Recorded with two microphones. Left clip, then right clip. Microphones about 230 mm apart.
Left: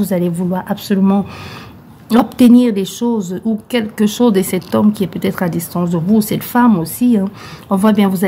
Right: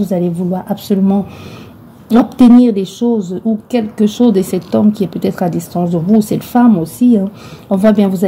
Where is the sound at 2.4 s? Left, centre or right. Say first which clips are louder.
Right 3 dB; left.